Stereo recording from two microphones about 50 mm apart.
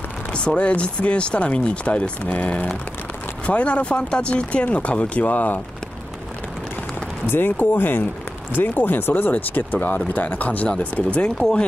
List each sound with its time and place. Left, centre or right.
0.3 s speech: left
3.4 s speech: left
7.2 s speech: left
11.3 s speech: centre